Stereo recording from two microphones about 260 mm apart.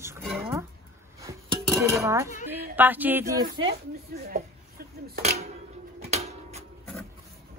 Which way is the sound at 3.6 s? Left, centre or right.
Right.